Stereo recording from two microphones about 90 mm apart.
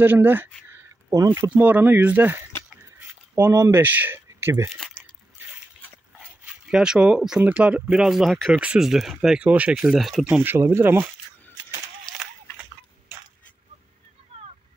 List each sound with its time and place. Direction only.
0.0 s speech: 20° right (ahead or behind)
1.1 s speech: 35° right (ahead or behind)
1.5 s speech: 20° right (ahead or behind)
2.7 s cutlery: 20° right (ahead or behind)
3.5 s speech: 30° right (ahead or behind)
4.6 s speech: centre (ahead or behind)
6.4 s speech: 10° right (ahead or behind)
10.4 s speech: 25° right (ahead or behind)
14.3 s a sound: 90° right